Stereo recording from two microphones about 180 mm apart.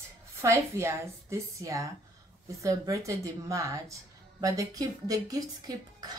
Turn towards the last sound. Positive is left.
turn(degrees=-20)  # may be behind; listen again after turning